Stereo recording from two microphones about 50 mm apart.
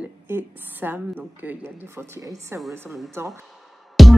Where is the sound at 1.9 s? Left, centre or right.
Right.